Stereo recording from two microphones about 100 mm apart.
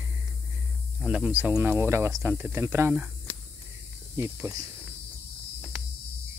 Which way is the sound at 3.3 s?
15° left (ahead or behind).